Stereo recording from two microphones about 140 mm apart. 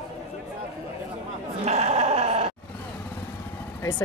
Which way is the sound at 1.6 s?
50° right (ahead or behind).